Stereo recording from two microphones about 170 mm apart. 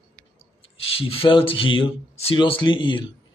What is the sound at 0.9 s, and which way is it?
Speech, 35° left (ahead or behind).